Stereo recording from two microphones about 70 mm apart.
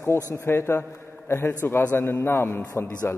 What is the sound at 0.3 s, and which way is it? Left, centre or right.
A man's voice, left.